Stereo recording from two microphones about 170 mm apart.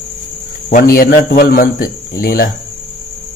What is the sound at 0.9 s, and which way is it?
Speech, 60° left (ahead or behind).